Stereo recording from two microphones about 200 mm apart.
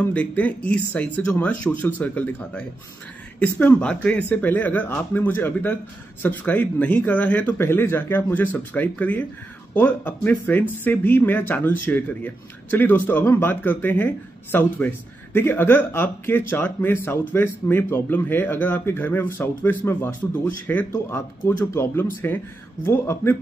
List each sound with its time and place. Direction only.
0.0 s speech: 10° left (ahead or behind)